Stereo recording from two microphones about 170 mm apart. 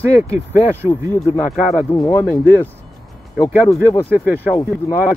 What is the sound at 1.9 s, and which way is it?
Speech, 15° left (ahead or behind).